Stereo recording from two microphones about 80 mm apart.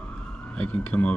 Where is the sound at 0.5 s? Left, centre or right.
Centre.